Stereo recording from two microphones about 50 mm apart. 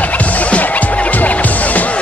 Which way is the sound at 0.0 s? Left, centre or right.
Left.